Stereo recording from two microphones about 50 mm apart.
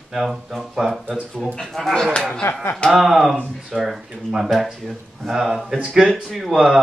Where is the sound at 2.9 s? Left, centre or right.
Centre.